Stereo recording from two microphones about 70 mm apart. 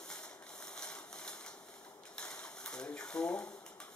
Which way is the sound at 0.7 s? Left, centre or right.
Centre.